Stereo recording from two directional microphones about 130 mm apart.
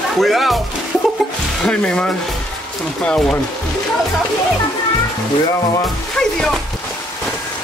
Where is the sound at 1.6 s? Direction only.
5° left (ahead or behind).